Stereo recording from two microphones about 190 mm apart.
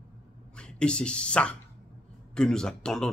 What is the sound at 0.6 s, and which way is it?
Speech, 5° left (ahead or behind).